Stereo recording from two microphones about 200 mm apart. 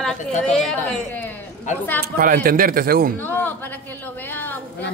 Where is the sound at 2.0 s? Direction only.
45° right (ahead or behind).